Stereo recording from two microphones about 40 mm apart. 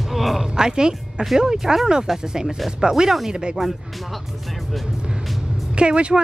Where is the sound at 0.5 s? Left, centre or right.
Centre.